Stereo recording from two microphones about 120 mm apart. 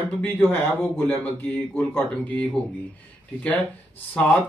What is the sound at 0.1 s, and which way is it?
Speech, 15° left (ahead or behind).